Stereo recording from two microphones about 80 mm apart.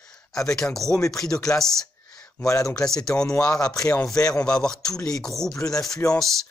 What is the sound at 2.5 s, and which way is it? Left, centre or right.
Speech, left.